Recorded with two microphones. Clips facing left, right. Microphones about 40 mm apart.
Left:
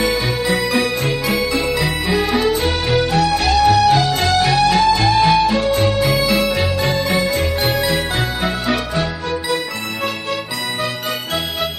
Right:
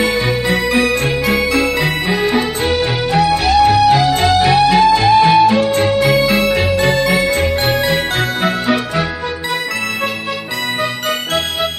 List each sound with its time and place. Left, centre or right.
0.0 s music: centre
2.1 s music: centre
7.2 s music: centre